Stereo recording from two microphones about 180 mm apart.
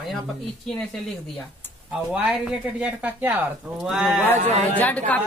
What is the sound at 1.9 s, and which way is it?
A woman's voice, 5° right (ahead or behind).